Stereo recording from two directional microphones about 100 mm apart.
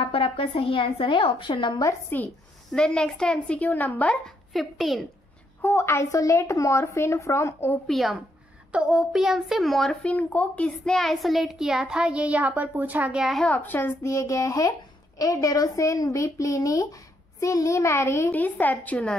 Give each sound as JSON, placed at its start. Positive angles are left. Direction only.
{"t": 0.0, "sound": "a woman's voice", "side_deg": 70}
{"t": 2.0, "sound": "a woman's voice", "side_deg": 20}
{"t": 4.5, "sound": "a child's voice", "side_deg": 0}
{"t": 5.6, "sound": "a woman's voice", "side_deg": 25}
{"t": 7.8, "sound": "a child's voice", "side_deg": 0}
{"t": 10.0, "sound": "a child's voice", "side_deg": 15}
{"t": 13.2, "sound": "a child's voice", "side_deg": 0}
{"t": 13.5, "sound": "a woman's voice", "side_deg": 20}
{"t": 18.3, "sound": "a woman's voice", "side_deg": 15}